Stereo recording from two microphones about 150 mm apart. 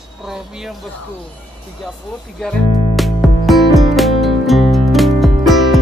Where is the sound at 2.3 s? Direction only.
Centre (ahead or behind).